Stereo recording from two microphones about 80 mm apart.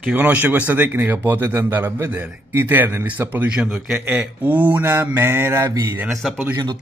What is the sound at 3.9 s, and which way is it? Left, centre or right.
A man's voice, centre.